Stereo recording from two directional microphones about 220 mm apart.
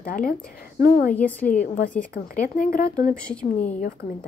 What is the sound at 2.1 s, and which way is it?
Speech, 40° left (ahead or behind).